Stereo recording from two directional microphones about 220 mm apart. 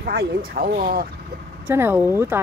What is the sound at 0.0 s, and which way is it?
Speech, 45° right (ahead or behind).